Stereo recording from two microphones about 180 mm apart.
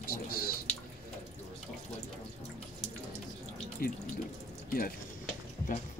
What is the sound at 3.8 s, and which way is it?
Speech, 55° left (ahead or behind).